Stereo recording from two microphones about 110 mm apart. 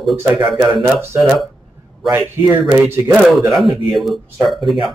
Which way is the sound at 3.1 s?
5° right (ahead or behind).